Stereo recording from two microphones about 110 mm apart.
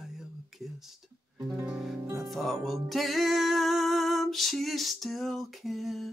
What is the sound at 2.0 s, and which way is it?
Music, 30° right (ahead or behind).